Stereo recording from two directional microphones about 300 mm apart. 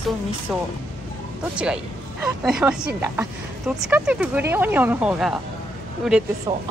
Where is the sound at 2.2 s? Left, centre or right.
Centre.